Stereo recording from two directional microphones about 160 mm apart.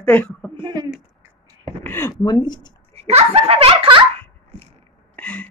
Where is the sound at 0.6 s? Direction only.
25° right (ahead or behind).